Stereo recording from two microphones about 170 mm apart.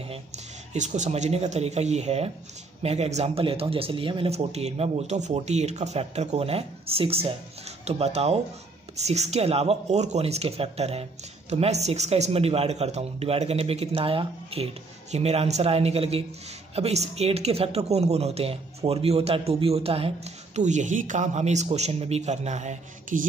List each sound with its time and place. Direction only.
0.7 s speech: 45° right (ahead or behind)